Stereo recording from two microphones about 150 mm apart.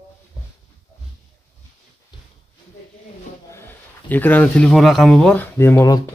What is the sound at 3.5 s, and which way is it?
Speech, 15° left (ahead or behind).